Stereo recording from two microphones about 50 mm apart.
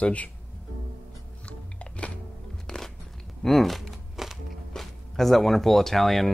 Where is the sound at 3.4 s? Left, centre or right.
Centre.